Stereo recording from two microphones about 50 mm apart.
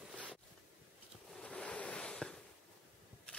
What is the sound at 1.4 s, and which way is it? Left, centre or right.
Ocean, left.